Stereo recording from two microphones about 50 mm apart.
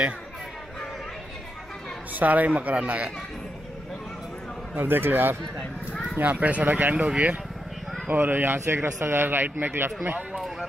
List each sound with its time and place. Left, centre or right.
2.1 s speech: right
4.7 s speech: right
6.3 s speech: right
8.1 s speech: right
8.6 s speech: right